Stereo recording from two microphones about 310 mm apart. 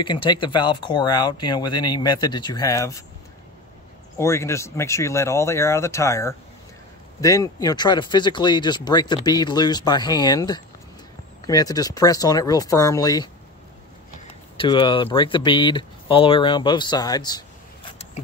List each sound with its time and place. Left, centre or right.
0.0 s speech: centre
4.2 s speech: centre
14.6 s speech: centre